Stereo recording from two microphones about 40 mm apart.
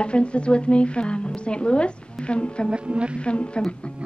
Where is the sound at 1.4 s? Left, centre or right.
Left.